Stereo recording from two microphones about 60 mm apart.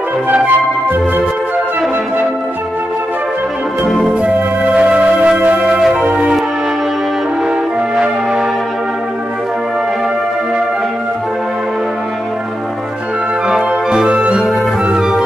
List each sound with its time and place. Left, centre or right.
4.2 s music: right
13.5 s music: centre